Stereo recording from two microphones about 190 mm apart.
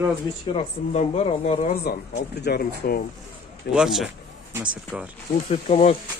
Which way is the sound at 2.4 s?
55° left (ahead or behind).